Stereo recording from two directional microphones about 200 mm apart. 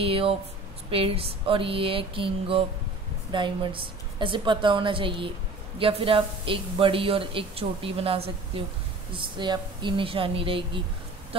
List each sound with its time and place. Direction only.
0.0 s speech: 30° right (ahead or behind)